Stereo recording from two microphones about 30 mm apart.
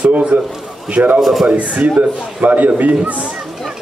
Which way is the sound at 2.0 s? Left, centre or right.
Right.